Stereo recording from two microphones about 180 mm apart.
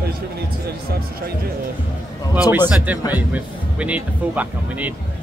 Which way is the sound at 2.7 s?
10° right (ahead or behind).